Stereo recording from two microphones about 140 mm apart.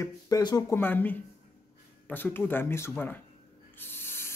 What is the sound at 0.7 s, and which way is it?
Speech, 15° left (ahead or behind).